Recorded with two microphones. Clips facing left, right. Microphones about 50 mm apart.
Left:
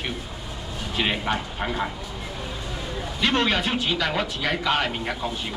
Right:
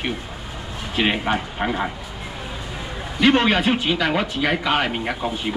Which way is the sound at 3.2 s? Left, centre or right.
Centre.